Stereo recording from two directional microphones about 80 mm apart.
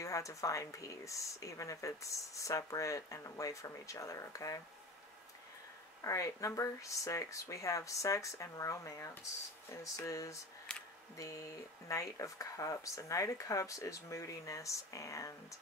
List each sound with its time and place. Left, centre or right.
0.0 s speech: left
6.0 s speech: left
10.7 s a sound: centre
11.1 s speech: left